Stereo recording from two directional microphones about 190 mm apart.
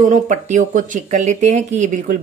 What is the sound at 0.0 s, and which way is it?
Speech, 40° right (ahead or behind).